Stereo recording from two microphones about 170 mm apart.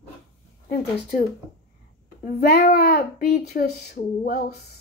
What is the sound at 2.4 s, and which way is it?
A child's voice, 60° left (ahead or behind).